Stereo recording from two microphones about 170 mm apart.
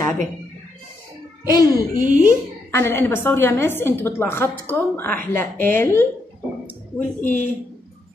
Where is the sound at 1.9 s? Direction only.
50° right (ahead or behind).